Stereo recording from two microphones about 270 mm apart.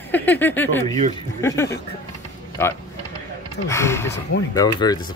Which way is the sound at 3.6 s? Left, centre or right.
Centre.